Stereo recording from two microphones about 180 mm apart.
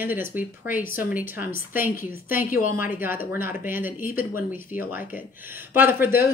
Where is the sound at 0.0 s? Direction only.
10° right (ahead or behind).